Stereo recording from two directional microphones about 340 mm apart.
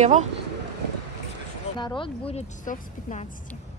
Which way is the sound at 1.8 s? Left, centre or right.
Centre.